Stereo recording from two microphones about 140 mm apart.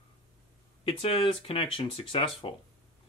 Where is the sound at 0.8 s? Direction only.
40° left (ahead or behind).